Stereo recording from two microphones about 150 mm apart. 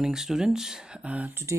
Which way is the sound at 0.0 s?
5° right (ahead or behind).